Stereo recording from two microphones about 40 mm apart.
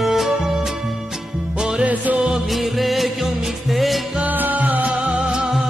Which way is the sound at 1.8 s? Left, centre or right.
Right.